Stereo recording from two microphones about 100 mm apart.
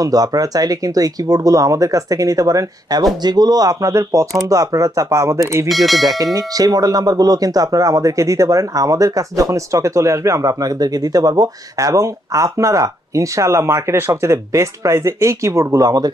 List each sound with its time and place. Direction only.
0.0 s speech: 35° right (ahead or behind)
5.7 s speech: centre (ahead or behind)
6.3 s speech: 40° right (ahead or behind)